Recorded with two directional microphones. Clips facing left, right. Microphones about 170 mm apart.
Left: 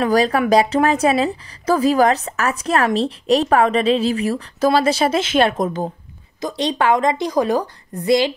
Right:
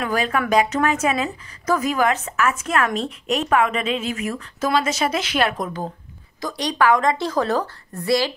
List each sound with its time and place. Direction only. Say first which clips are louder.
0.0 s a woman's voice: left 6 dB; 35° left (ahead or behind); by 8.3 s 20° left (ahead or behind)